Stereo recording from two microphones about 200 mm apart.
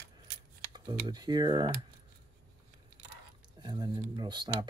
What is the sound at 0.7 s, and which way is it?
Speech, 20° right (ahead or behind).